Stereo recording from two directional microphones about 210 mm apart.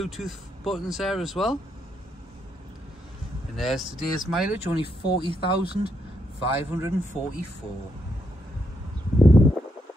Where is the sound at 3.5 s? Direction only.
Centre (ahead or behind).